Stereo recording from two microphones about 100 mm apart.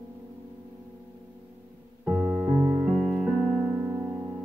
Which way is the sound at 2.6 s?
30° right (ahead or behind).